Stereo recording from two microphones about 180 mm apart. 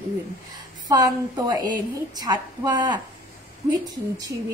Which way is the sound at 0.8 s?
20° right (ahead or behind).